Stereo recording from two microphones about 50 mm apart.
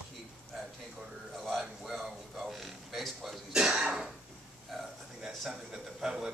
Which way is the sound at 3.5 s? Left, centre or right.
Centre.